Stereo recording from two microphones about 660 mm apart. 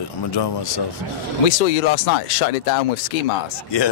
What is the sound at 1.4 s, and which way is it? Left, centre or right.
A man's voice, left.